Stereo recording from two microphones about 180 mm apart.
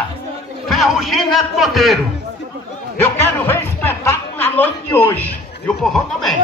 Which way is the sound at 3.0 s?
15° left (ahead or behind).